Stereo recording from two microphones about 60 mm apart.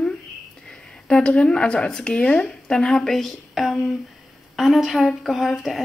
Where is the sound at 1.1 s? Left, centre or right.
Centre.